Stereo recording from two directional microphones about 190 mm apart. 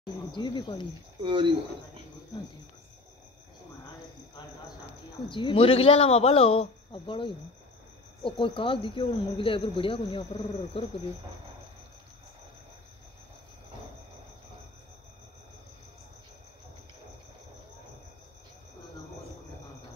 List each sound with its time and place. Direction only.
0.0 s speech: 25° left (ahead or behind)
1.2 s speech: 25° right (ahead or behind)
5.3 s a man's voice: 25° left (ahead or behind)